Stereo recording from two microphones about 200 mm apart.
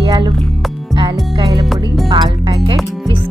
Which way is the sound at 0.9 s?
25° right (ahead or behind).